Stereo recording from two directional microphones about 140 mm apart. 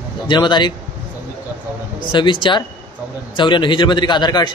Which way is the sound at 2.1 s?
35° left (ahead or behind).